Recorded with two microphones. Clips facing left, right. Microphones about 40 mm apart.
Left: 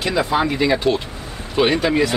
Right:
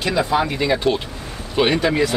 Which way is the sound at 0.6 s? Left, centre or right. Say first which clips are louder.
Left 1 dB; centre.